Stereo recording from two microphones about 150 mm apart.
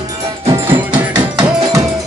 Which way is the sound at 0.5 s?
15° right (ahead or behind).